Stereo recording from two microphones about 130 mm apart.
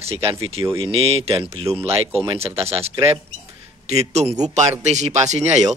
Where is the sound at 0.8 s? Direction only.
45° right (ahead or behind).